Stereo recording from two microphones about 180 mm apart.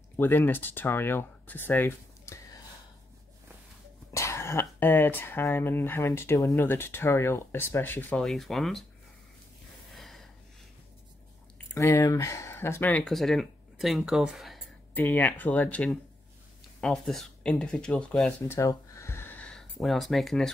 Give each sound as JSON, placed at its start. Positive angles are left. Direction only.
{"t": 0.2, "sound": "speech", "side_deg": 10}
{"t": 4.1, "sound": "speech", "side_deg": 15}
{"t": 9.9, "sound": "gasp", "side_deg": 0}
{"t": 11.5, "sound": "speech", "side_deg": 15}
{"t": 15.0, "sound": "speech", "side_deg": 10}
{"t": 18.5, "sound": "a sound", "side_deg": 15}